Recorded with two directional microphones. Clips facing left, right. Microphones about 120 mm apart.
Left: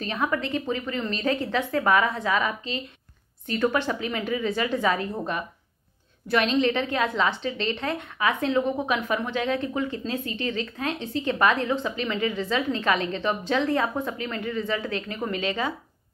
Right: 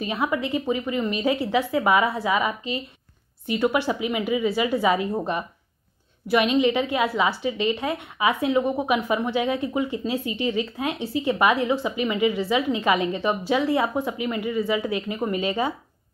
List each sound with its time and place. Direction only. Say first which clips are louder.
0.0 s a woman's voice: right 2 dB; 10° right (ahead or behind)